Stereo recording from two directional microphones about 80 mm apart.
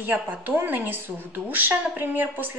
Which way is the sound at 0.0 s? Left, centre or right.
Right.